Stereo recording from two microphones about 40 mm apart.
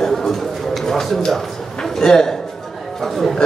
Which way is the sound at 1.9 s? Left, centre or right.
Centre.